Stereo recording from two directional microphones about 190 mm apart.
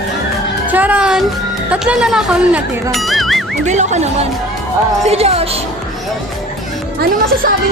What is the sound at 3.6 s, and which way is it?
Speech, 40° right (ahead or behind).